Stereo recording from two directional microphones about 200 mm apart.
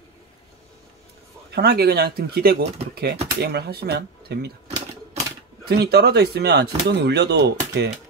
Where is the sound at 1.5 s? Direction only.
55° right (ahead or behind).